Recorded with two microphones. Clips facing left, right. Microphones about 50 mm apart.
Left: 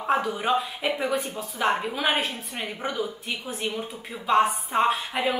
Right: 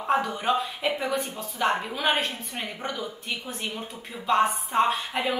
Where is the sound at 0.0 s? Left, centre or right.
Centre.